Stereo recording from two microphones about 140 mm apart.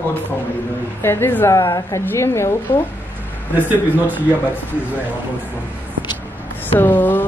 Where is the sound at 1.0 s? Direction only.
15° left (ahead or behind).